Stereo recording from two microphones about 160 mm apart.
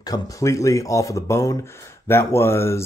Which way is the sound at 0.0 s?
20° left (ahead or behind).